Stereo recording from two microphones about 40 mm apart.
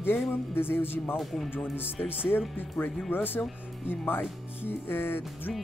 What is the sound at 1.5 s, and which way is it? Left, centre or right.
Speech, left.